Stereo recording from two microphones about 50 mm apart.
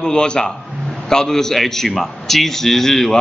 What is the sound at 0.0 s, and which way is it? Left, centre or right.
A man's voice, centre.